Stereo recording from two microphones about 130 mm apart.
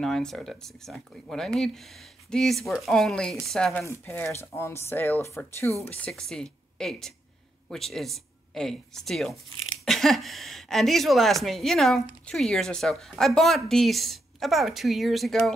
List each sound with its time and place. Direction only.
0.0 s speech: 5° left (ahead or behind)
3.8 s speech: 20° left (ahead or behind)
5.9 s speech: 5° left (ahead or behind)